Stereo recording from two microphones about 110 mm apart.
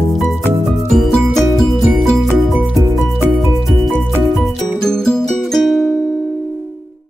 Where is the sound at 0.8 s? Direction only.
Centre (ahead or behind).